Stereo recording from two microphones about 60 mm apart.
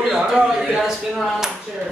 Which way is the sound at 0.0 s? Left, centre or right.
Centre.